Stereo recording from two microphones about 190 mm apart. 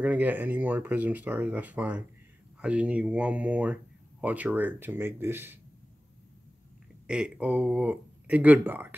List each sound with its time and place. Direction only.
0.0 s speech: 10° right (ahead or behind)
7.1 s speech: 5° right (ahead or behind)